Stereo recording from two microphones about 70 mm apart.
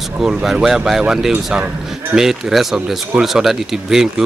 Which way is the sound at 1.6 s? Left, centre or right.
Right.